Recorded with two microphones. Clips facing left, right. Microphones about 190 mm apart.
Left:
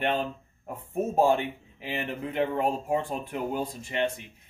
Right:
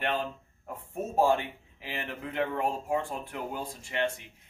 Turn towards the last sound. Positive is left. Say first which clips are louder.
# left 2 dB
turn(degrees=20)  # may be behind; listen again after turning